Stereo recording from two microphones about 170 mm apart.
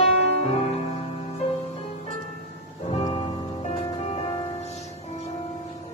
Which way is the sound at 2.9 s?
40° left (ahead or behind).